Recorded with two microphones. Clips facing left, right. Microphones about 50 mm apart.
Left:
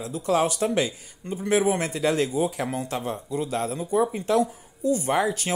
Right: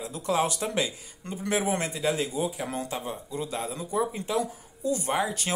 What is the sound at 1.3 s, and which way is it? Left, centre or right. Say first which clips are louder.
Speech: left 5 dB; left.